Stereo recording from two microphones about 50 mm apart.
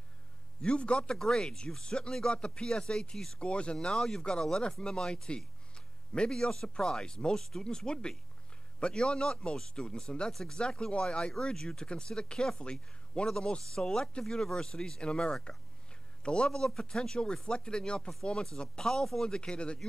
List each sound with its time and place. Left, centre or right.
0.6 s a man's voice: left